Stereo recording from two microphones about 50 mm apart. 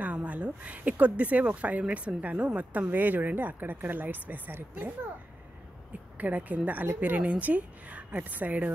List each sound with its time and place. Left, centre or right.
0.0 s speech: right
6.1 s speech: right